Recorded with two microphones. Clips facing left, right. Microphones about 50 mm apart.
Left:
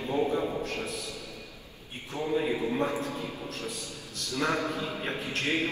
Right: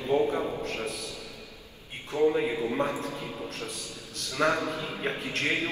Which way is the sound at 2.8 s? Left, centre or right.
Right.